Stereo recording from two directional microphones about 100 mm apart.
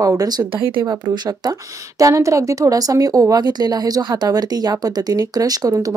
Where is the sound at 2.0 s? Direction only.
30° right (ahead or behind).